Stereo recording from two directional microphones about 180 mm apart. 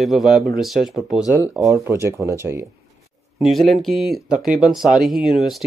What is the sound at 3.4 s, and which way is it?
Speech, centre (ahead or behind).